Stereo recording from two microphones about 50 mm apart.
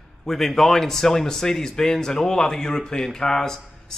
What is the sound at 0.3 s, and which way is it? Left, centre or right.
A man's voice, centre.